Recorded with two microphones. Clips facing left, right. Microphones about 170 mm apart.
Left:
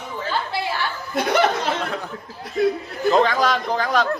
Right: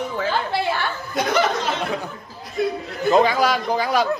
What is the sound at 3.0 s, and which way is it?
A man's voice, 10° right (ahead or behind).